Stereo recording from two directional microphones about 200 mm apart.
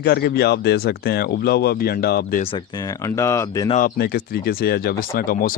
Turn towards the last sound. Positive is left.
turn(degrees=45)  # may be behind; listen again after turning